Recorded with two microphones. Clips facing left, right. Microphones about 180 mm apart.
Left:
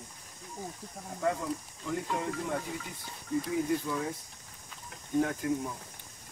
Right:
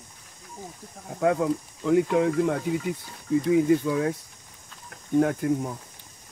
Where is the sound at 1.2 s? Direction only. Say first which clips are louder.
Right 9 dB; 75° right (ahead or behind).